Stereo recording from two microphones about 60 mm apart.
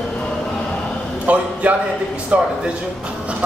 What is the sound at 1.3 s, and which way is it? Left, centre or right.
A man's voice, right.